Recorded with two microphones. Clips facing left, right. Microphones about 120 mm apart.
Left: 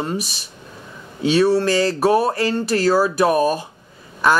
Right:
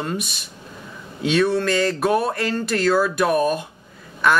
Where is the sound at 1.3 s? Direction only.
30° left (ahead or behind).